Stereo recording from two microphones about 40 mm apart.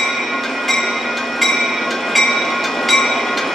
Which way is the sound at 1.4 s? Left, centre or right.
Centre.